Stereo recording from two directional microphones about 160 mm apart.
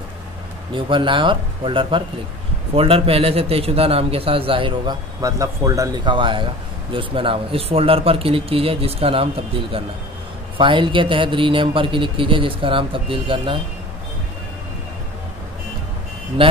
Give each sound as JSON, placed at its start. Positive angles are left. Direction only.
{"t": 0.7, "sound": "speech", "side_deg": -30}
{"t": 5.2, "sound": "speech", "side_deg": -20}